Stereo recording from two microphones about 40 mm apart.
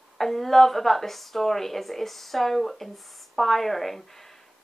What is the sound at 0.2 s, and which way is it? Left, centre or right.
A woman's voice, centre.